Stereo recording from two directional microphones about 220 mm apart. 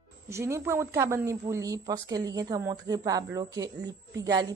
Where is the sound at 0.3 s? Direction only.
10° right (ahead or behind).